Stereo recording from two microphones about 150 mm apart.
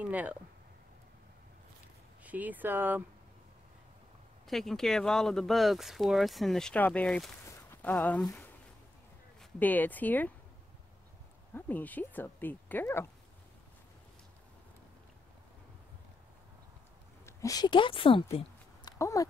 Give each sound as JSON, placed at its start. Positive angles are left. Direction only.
{"t": 0.0, "sound": "speech", "side_deg": -10}
{"t": 2.2, "sound": "speech", "side_deg": -10}
{"t": 4.5, "sound": "speech", "side_deg": 0}
{"t": 7.4, "sound": "a sound", "side_deg": 15}
{"t": 9.4, "sound": "speech", "side_deg": 10}
{"t": 11.5, "sound": "speech", "side_deg": 10}
{"t": 17.3, "sound": "speech", "side_deg": 20}
{"t": 18.9, "sound": "a sound", "side_deg": 20}